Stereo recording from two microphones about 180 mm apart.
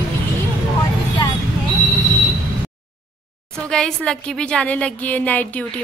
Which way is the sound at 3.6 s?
5° left (ahead or behind).